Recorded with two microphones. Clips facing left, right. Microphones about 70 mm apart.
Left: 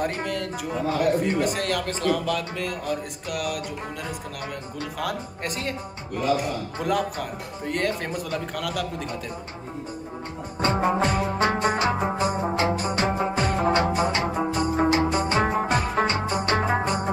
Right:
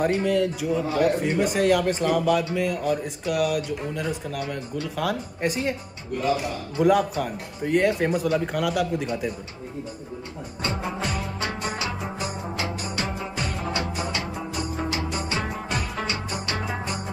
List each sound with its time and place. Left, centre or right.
0.0 s a man's voice: centre
1.9 s a man's voice: centre
6.8 s a man's voice: centre
10.6 s music: left